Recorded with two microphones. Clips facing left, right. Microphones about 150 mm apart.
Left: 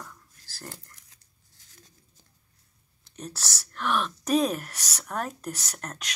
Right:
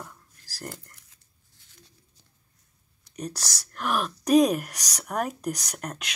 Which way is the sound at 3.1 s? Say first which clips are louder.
Right 4 dB; centre (ahead or behind).